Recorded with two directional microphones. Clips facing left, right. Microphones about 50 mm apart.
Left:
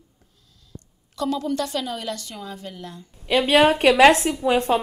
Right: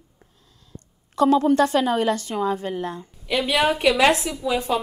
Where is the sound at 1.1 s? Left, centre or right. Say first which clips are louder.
Right 8 dB; right.